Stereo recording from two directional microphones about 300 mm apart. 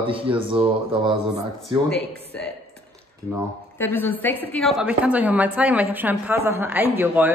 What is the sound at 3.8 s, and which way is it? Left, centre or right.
A woman's voice, centre.